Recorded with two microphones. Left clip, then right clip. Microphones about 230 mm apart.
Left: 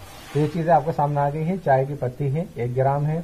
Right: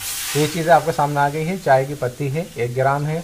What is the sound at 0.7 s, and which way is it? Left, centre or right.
Speech, right.